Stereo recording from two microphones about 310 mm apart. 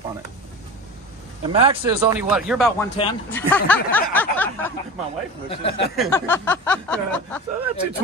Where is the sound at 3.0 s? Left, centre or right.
Centre.